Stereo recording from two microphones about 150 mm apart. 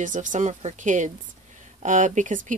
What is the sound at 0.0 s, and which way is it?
Speech, 55° right (ahead or behind).